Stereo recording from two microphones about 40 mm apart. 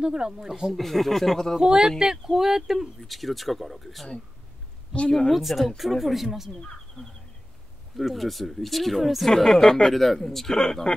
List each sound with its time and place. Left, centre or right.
0.0 s speech: centre
0.7 s speech: centre
1.6 s speech: centre
5.3 s speech: centre
6.5 s speech: centre
7.9 s speech: centre